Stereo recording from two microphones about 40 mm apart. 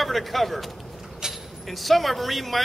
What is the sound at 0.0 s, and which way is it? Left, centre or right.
Speech, centre.